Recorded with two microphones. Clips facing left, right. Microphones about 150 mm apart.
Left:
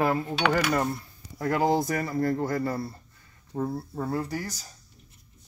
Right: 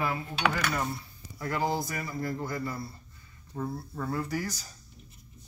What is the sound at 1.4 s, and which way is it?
Speech, 50° left (ahead or behind).